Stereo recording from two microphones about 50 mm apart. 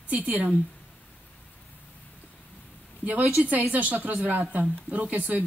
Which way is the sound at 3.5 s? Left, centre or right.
Right.